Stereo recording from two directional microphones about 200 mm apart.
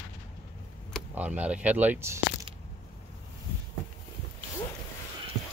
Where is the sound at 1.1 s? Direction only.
5° right (ahead or behind).